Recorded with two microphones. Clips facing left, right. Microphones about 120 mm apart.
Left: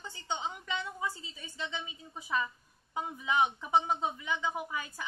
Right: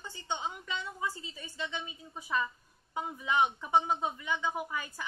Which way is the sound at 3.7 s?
15° right (ahead or behind).